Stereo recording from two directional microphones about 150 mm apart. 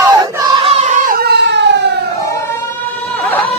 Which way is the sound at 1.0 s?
80° right.